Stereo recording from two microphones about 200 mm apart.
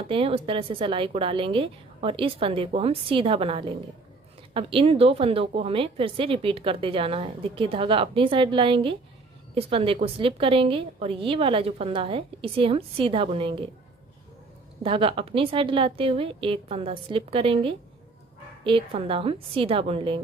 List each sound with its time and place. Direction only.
0.0 s speech: 25° right (ahead or behind)
14.8 s speech: 25° right (ahead or behind)